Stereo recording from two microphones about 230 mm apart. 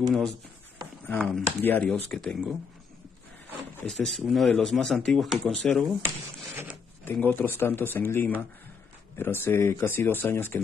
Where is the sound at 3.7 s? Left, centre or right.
Centre.